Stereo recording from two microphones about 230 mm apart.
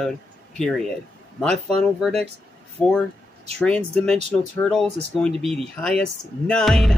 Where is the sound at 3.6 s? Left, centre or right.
Centre.